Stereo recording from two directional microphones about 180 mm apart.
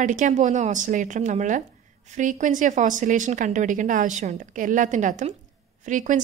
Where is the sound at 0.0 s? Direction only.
45° right (ahead or behind).